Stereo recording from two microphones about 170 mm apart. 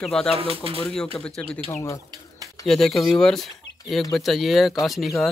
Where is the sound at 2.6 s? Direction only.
Centre (ahead or behind).